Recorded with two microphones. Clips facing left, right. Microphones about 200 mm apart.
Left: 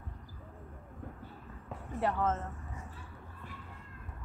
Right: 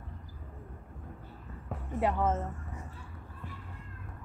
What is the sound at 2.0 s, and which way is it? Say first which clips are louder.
Speech: right 2 dB; 15° right (ahead or behind).